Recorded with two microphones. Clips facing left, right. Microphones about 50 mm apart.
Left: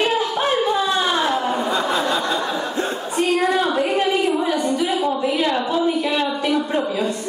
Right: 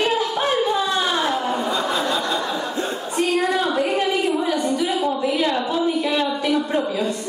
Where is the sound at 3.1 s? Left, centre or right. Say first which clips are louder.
Left 2 dB; centre.